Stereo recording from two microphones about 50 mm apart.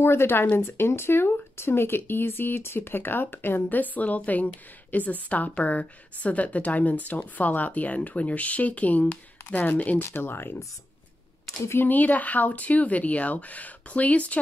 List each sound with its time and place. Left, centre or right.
0.0 s speech: left
3.6 s a woman's voice: left
10.0 s speech: left
11.8 s a woman's voice: left